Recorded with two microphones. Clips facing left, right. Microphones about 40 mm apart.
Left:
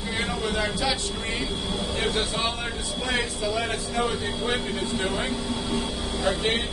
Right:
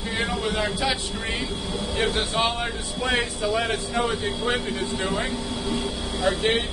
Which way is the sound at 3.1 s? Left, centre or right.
Right.